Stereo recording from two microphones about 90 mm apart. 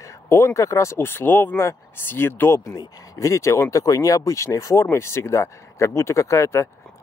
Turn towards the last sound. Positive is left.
turn(degrees=30)  # may be behind; listen again after turning